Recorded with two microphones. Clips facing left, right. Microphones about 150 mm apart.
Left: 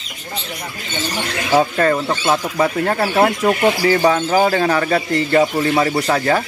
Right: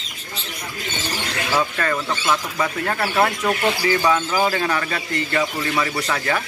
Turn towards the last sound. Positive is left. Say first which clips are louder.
# left 7 dB
turn(degrees=35)  # may be behind; listen again after turning